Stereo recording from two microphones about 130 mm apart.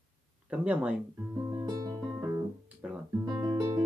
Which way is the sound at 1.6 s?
30° right (ahead or behind).